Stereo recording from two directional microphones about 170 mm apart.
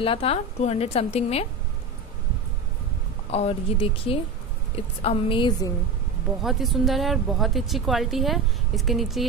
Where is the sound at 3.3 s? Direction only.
35° left (ahead or behind).